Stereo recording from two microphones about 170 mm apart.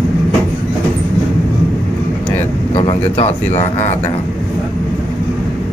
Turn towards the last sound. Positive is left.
turn(degrees=40)  # may be behind; listen again after turning